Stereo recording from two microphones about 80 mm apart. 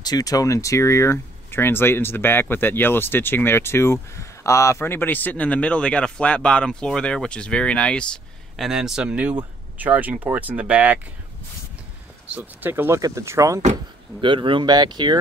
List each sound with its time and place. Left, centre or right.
0.0 s speech: left; by 8.2 s centre
8.5 s speech: centre
12.3 s speech: right
14.2 s speech: right